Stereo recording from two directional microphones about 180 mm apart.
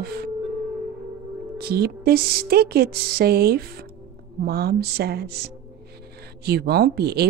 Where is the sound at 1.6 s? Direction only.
60° right (ahead or behind).